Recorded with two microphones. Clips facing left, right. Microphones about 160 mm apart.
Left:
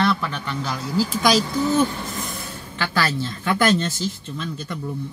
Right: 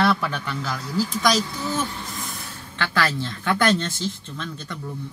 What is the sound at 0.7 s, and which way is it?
Speech, 30° left (ahead or behind).